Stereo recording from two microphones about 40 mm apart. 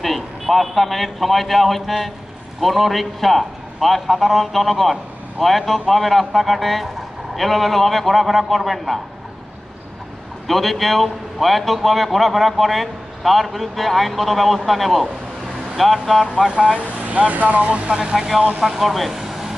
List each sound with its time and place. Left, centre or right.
0.0 s a man's voice: centre
10.4 s a man's voice: centre
16.7 s speech: right
18.1 s speech: centre